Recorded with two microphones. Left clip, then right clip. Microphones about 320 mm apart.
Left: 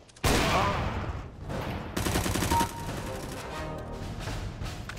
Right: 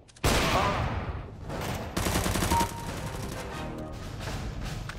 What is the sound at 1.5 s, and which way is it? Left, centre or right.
Fusillade, centre.